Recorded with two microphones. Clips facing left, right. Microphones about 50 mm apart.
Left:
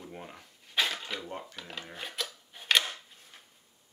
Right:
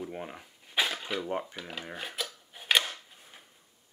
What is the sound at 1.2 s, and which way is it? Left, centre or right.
Dishes, right.